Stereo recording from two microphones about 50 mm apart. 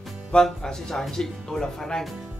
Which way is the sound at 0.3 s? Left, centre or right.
Centre.